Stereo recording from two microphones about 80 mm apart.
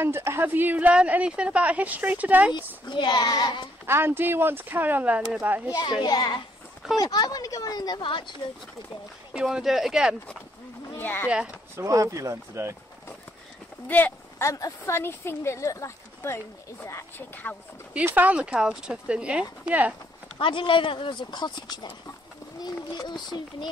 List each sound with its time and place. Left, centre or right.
0.0 s a woman's voice: right
2.5 s a child's voice: left
3.8 s a woman's voice: right
5.7 s a child's voice: left
9.3 s speech: centre
11.0 s speech: left
11.2 s speech: centre
11.7 s speech: right
13.8 s speech: left
14.4 s speech: left
18.0 s speech: right
20.3 s a child's voice: left